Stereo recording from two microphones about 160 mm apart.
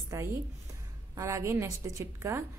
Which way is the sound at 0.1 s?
20° right (ahead or behind).